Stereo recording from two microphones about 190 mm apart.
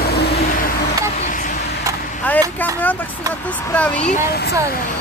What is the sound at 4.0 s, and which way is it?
Speech, 40° left (ahead or behind).